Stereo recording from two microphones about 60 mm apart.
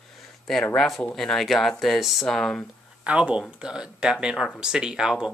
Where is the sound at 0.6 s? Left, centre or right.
Centre.